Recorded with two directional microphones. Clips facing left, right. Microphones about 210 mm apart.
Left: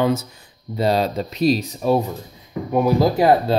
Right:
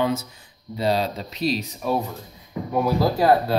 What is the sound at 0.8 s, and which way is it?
Speech, 45° left (ahead or behind).